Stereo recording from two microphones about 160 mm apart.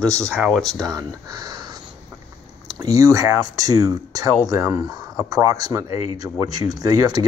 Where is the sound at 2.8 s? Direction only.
20° right (ahead or behind).